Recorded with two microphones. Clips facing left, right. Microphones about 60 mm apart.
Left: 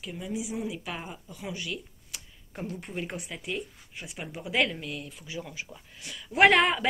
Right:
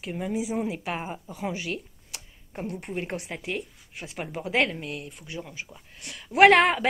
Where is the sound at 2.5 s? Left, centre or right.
Right.